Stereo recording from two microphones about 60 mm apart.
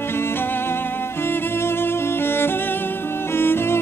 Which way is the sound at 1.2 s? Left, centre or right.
Left.